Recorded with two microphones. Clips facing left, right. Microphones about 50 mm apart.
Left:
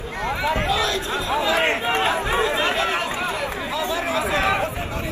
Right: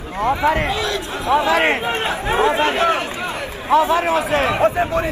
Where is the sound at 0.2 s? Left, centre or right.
Right.